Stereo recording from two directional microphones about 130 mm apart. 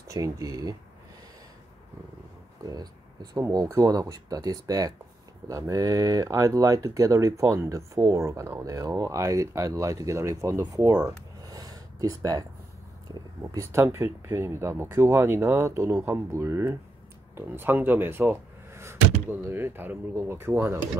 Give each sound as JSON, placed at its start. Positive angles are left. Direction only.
{"t": 0.1, "sound": "speech", "side_deg": -25}
{"t": 2.6, "sound": "speech", "side_deg": -30}